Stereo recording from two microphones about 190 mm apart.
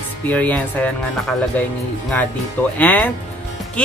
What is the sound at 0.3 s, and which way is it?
Speech, 10° left (ahead or behind).